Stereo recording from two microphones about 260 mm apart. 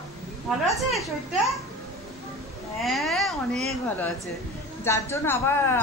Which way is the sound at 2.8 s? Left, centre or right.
Centre.